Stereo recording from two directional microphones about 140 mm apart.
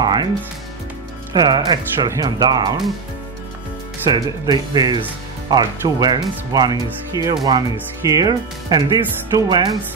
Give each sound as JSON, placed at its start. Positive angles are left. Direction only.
{"t": 0.0, "sound": "music", "side_deg": -30}
{"t": 1.3, "sound": "speech", "side_deg": -30}
{"t": 4.1, "sound": "speech", "side_deg": -30}